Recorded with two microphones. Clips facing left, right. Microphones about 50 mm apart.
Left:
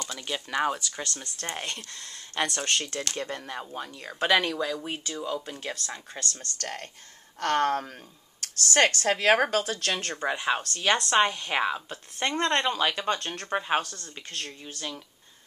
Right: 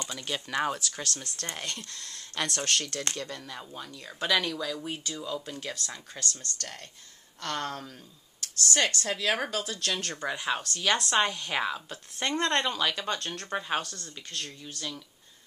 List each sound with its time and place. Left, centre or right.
0.2 s speech: centre
1.4 s speech: left
3.2 s speech: left